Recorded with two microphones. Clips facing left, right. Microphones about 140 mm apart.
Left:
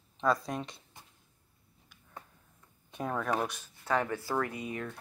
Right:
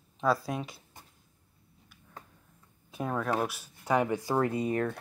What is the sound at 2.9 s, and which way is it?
Speech, 5° right (ahead or behind).